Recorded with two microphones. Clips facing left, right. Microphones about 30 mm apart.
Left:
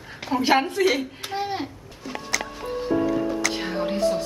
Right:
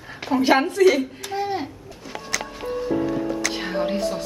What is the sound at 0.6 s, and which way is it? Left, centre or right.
Speech, left.